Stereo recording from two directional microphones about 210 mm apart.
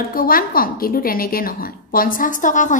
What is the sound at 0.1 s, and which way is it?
A woman's voice, 45° left (ahead or behind).